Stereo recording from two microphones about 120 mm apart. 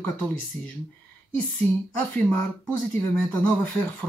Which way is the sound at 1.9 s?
15° left (ahead or behind).